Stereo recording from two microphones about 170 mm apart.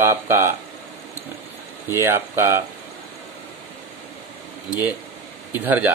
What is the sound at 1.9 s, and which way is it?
Speech, 15° right (ahead or behind).